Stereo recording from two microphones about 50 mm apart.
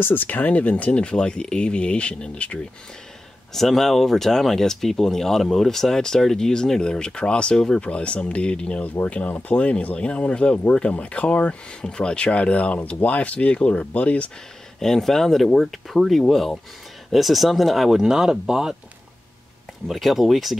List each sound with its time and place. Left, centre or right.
0.0 s speech: left
3.5 s speech: centre; by 11.5 s left
11.8 s speech: centre
14.8 s speech: centre
19.9 s speech: centre